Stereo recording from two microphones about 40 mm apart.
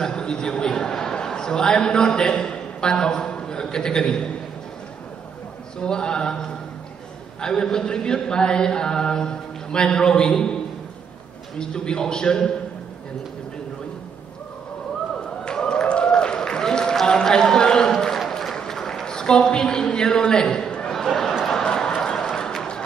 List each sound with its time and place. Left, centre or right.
0.0 s a man's voice: centre
5.8 s a man's voice: left
7.3 s a man's voice: centre
15.4 s a sound: left